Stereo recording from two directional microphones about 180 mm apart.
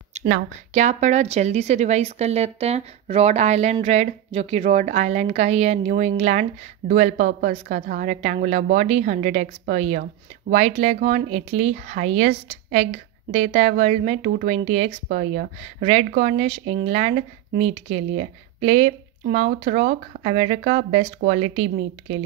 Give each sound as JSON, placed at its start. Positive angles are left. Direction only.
{"t": 0.1, "sound": "speech", "side_deg": -40}